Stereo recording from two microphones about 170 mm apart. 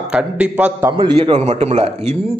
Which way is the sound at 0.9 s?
30° right (ahead or behind).